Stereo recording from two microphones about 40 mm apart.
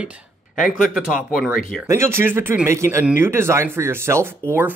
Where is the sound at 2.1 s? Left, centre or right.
Right.